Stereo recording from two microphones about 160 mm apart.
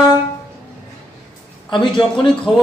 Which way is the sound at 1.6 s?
30° left (ahead or behind).